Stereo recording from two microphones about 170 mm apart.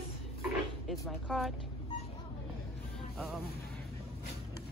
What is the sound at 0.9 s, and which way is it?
Speech, centre (ahead or behind).